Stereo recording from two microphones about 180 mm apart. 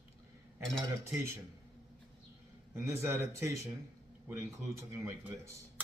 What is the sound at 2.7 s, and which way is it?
Speech, 15° right (ahead or behind).